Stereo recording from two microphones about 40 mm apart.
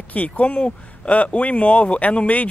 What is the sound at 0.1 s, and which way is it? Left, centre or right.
Speech, left.